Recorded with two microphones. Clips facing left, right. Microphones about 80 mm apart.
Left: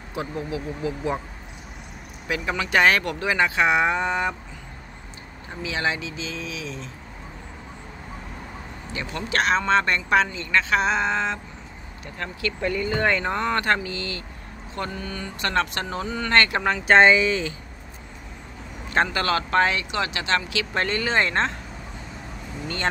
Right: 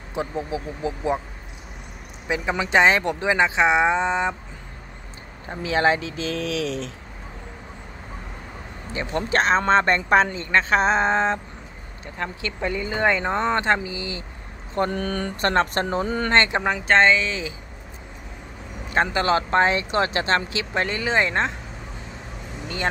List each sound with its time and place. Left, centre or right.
0.1 s speech: right
2.2 s speech: right
5.6 s speech: right
8.9 s speech: right
12.2 s speech: right
14.9 s speech: right
15.4 s speech: right
16.8 s speech: centre
19.0 s speech: right
20.7 s speech: centre